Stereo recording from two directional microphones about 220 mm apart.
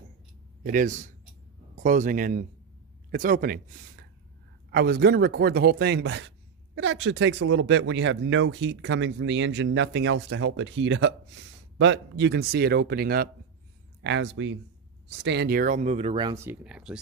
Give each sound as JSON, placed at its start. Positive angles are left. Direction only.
{"t": 0.7, "sound": "speech", "side_deg": -35}
{"t": 4.6, "sound": "speech", "side_deg": -45}
{"t": 14.0, "sound": "speech", "side_deg": -55}
{"t": 15.2, "sound": "speech", "side_deg": -45}
{"t": 16.4, "sound": "speech", "side_deg": -5}